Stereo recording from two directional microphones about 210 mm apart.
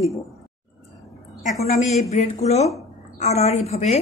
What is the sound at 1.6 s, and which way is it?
A woman's voice, 35° left (ahead or behind).